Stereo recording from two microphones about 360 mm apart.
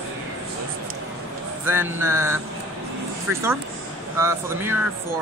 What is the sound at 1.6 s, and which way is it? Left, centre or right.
Speech, centre.